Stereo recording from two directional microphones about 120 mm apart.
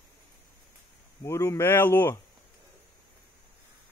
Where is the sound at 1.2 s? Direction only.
25° left (ahead or behind).